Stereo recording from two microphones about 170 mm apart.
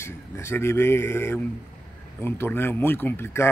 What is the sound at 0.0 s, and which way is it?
Speech, 15° left (ahead or behind).